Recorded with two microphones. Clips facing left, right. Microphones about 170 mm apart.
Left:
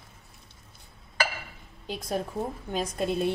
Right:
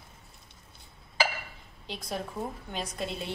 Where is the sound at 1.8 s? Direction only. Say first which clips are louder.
Left 5 dB; 45° left (ahead or behind).